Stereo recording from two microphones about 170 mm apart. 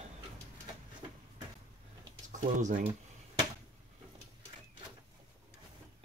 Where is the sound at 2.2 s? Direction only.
45° right (ahead or behind).